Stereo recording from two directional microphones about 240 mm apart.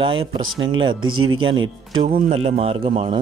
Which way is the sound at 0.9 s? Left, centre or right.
Right.